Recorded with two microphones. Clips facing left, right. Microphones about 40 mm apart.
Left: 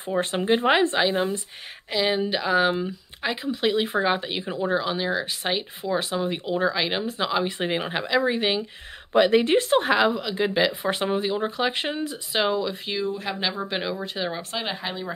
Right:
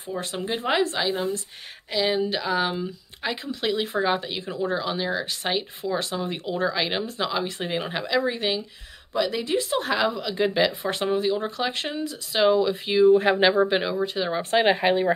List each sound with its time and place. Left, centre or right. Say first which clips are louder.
0.1 s speech: left 5 dB; left
0.5 s speech: left 4 dB; centre
1.9 s speech: even; centre
9.1 s speech: left 6 dB; left
9.8 s speech: left 3 dB; centre
12.3 s speech: right 5 dB; centre
13.0 s speech: right 12 dB; right
13.7 s speech: right 4 dB; centre
14.5 s speech: right 10 dB; right